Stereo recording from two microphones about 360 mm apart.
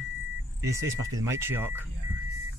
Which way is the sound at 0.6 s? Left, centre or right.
Centre.